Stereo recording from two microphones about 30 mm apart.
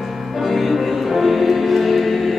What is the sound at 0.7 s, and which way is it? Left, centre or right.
Music, centre.